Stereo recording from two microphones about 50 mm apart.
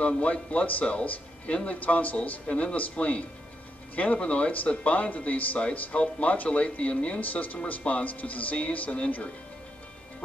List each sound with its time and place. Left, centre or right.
0.0 s speech: left